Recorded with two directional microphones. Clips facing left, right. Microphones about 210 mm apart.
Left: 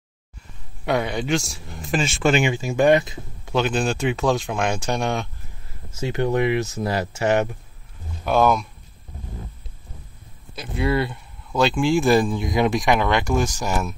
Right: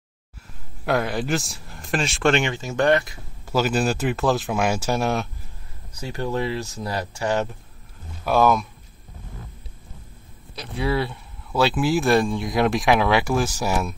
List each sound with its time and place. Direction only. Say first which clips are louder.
0.8 s speech: even; centre (ahead or behind); by 3.2 s 20° left (ahead or behind)
3.4 s speech: even; 5° right (ahead or behind)
5.9 s speech: left 5 dB; 20° left (ahead or behind)
8.2 s speech: even; centre (ahead or behind)
10.5 s speech: left 2 dB; centre (ahead or behind)